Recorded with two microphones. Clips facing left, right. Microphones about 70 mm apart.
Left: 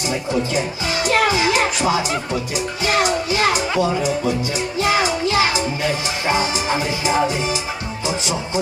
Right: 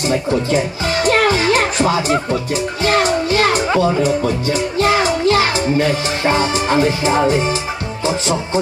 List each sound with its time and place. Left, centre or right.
0.1 s speech: right
8.0 s music: right